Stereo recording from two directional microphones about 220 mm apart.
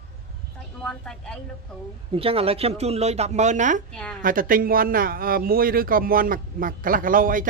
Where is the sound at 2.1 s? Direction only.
25° right (ahead or behind).